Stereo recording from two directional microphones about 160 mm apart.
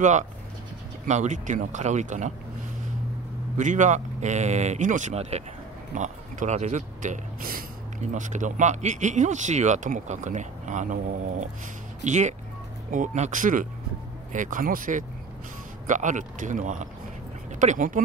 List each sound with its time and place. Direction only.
1.0 s speech: 50° right (ahead or behind)
3.5 s speech: 50° right (ahead or behind)